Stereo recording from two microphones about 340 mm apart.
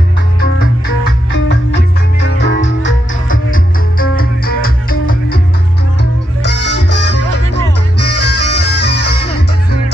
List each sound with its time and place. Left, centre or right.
2.2 s music: left
6.4 s music: left